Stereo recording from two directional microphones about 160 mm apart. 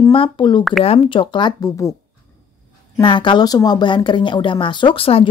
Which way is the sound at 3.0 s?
30° left (ahead or behind).